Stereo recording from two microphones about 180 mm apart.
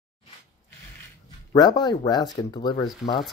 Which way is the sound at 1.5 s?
25° left (ahead or behind).